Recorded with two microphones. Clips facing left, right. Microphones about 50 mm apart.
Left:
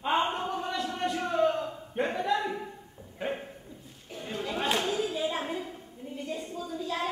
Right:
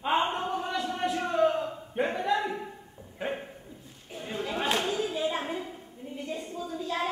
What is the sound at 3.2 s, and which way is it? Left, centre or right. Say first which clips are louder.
Dog: even; centre.